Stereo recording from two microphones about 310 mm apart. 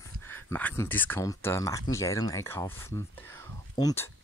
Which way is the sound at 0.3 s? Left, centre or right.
Centre.